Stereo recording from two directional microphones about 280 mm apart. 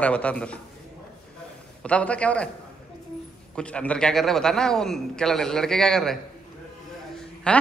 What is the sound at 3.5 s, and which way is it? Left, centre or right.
A man's voice, centre.